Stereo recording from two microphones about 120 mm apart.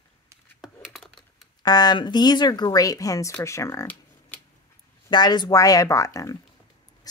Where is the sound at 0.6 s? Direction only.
Centre (ahead or behind).